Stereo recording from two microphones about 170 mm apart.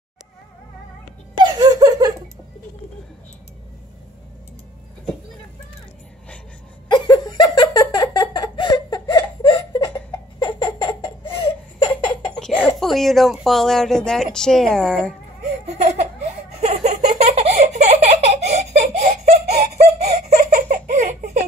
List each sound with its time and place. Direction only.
1.4 s laughter: 25° right (ahead or behind)
6.9 s giggle: 25° left (ahead or behind)
10.4 s laughter: 25° left (ahead or behind)
12.6 s speech: centre (ahead or behind)
15.6 s laughter: 40° right (ahead or behind)
19.7 s giggle: 40° right (ahead or behind)